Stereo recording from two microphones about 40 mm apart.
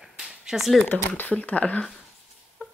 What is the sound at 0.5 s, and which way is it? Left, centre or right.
Speech, centre.